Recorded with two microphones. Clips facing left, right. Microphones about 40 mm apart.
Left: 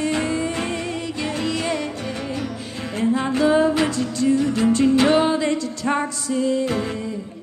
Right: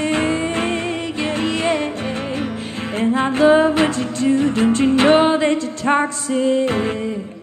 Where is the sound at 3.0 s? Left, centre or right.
Right.